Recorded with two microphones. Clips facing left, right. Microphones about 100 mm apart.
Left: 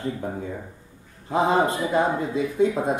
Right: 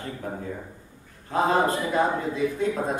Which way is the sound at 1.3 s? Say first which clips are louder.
Left 1 dB; 20° left (ahead or behind).